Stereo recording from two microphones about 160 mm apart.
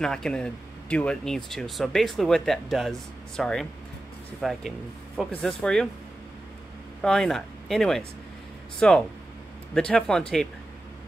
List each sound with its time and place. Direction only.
0.0 s speech: 5° left (ahead or behind)
7.0 s speech: 5° left (ahead or behind)